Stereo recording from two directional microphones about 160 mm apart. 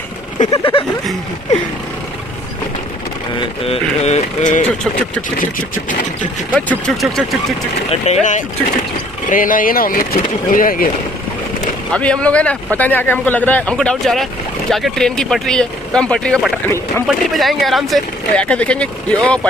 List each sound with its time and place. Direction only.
0.4 s speech: 50° left (ahead or behind)
3.3 s speech: 40° left (ahead or behind)
6.5 s speech: 5° left (ahead or behind)
7.9 s speech: 40° left (ahead or behind); by 10.9 s 60° left (ahead or behind)
11.9 s speech: 5° left (ahead or behind)